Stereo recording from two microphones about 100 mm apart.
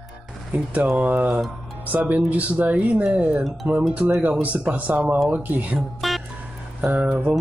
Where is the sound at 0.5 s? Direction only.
20° right (ahead or behind).